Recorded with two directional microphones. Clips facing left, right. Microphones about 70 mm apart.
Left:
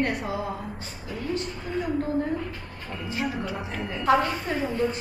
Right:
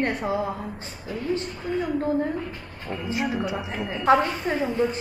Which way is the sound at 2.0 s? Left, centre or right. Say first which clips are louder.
Right 2 dB; right.